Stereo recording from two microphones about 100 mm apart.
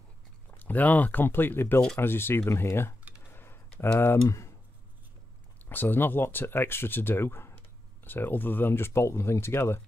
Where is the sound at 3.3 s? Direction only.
25° left (ahead or behind).